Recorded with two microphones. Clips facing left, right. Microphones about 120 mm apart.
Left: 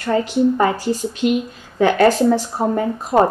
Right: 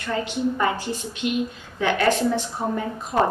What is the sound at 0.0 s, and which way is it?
Speech, 40° left (ahead or behind).